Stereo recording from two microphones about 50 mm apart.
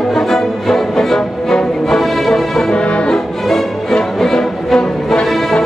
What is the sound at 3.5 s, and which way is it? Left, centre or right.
Music, centre.